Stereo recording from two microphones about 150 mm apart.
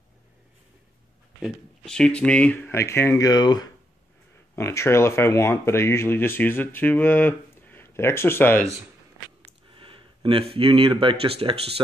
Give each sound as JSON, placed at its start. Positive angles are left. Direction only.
{"t": 1.4, "sound": "speech", "side_deg": 5}
{"t": 9.8, "sound": "speech", "side_deg": -35}